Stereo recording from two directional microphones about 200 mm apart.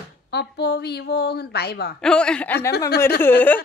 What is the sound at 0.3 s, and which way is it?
A woman's voice, 55° left (ahead or behind).